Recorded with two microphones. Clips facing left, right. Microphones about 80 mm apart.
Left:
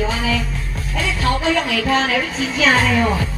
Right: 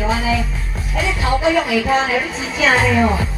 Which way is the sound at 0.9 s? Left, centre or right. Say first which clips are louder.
Right 1 dB; centre.